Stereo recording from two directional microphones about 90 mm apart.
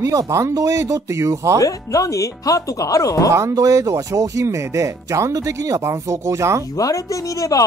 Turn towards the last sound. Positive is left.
turn(degrees=40)  # may be behind; listen again after turning